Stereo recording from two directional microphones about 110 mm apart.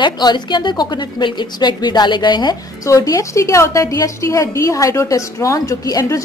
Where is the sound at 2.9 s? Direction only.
30° left (ahead or behind).